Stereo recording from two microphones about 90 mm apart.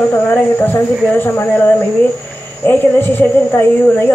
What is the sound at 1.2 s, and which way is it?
Speech, 20° left (ahead or behind).